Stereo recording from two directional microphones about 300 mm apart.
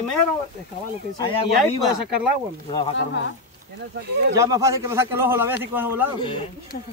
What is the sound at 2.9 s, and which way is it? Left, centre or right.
Speech, left.